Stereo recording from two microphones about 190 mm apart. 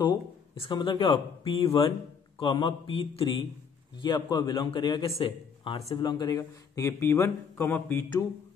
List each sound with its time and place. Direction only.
0.6 s speech: 25° left (ahead or behind)